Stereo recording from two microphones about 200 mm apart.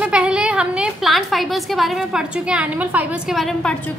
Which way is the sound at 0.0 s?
5° right (ahead or behind).